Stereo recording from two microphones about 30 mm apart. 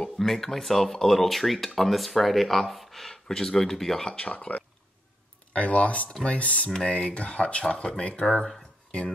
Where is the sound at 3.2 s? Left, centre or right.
Centre.